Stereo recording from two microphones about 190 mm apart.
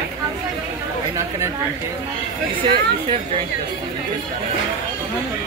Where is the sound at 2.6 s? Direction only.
25° right (ahead or behind).